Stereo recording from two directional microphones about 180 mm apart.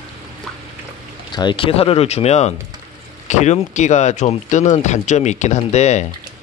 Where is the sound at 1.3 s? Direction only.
25° left (ahead or behind).